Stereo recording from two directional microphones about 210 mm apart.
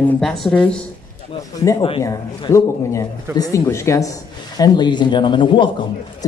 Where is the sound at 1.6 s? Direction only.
15° left (ahead or behind).